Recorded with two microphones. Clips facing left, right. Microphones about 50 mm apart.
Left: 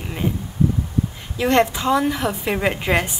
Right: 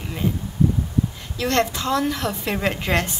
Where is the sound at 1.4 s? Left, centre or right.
Centre.